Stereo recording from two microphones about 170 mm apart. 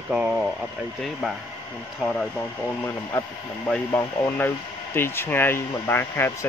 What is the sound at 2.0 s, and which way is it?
Speech, 5° left (ahead or behind).